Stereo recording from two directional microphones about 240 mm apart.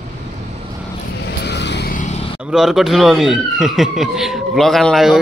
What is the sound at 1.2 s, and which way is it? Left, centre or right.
Vehicle, left.